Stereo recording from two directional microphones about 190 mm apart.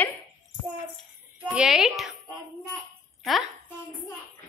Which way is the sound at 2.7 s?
Centre (ahead or behind).